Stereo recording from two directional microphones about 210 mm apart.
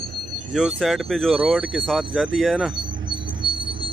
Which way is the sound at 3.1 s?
25° right (ahead or behind).